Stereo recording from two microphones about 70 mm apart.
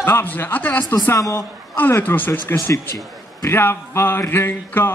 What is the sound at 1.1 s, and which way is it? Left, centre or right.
Speech, left.